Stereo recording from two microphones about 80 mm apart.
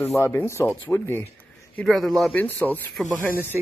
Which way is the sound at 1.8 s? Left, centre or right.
Centre.